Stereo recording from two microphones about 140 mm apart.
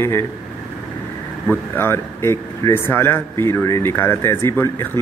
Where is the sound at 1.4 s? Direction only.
15° left (ahead or behind).